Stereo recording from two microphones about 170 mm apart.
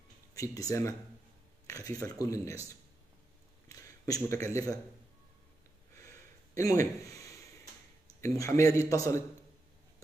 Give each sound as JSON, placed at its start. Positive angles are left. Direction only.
{"t": 0.3, "sound": "speech", "side_deg": 20}
{"t": 3.6, "sound": "a sound", "side_deg": 20}
{"t": 6.5, "sound": "speech", "side_deg": 20}